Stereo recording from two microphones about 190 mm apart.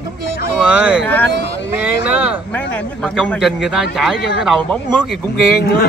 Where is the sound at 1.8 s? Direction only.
5° right (ahead or behind).